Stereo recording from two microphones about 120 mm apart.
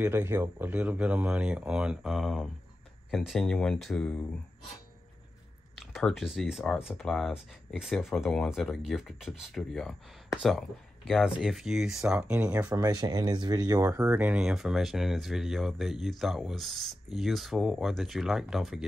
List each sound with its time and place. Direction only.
0.0 s speech: 20° right (ahead or behind); by 4.3 s 5° left (ahead or behind)
5.8 s speech: centre (ahead or behind)
11.1 s speech: 5° right (ahead or behind)
12.7 s speech: 30° right (ahead or behind)
13.9 s speech: 10° right (ahead or behind)